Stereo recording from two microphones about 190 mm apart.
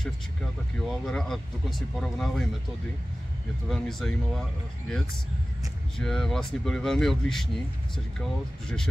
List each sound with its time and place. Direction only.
0.7 s speech: centre (ahead or behind)
3.6 s speech: centre (ahead or behind)
5.9 s speech: centre (ahead or behind)